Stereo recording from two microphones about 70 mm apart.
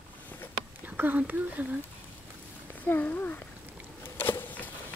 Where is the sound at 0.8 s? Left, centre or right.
Right.